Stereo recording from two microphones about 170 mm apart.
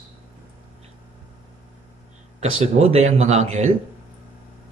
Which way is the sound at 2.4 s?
40° right (ahead or behind).